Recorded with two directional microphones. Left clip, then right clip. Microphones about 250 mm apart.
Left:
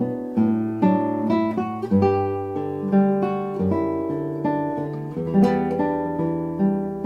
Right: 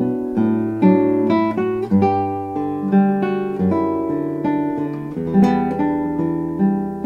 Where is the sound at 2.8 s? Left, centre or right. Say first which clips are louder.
Right 1 dB; right.